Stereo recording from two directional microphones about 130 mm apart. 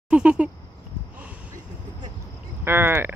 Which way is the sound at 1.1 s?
10° right (ahead or behind).